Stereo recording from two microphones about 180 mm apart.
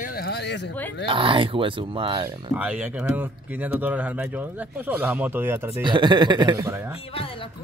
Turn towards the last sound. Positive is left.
turn(degrees=-15)  # may be behind; listen again after turning